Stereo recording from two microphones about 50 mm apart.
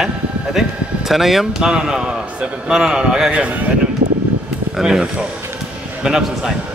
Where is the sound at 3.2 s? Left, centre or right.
Right.